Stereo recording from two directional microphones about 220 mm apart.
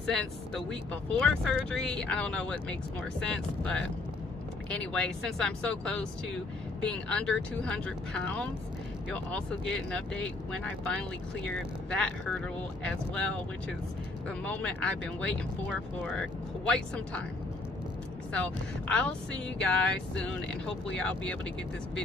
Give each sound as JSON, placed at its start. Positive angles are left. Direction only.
{"t": 0.0, "sound": "speech", "side_deg": 0}
{"t": 14.4, "sound": "speech", "side_deg": 5}
{"t": 18.3, "sound": "speech", "side_deg": 5}